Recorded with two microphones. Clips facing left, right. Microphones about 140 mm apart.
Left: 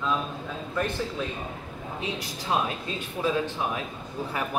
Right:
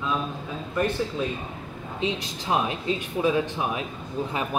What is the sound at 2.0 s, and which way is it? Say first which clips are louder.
Speech: right 6 dB; 20° right (ahead or behind).